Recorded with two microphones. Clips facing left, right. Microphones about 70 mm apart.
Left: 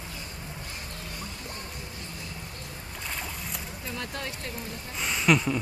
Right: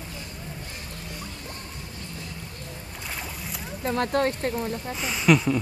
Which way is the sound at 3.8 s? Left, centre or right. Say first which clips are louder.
Right 14 dB; right.